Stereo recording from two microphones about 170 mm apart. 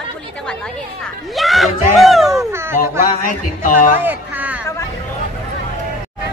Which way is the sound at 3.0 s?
55° left (ahead or behind).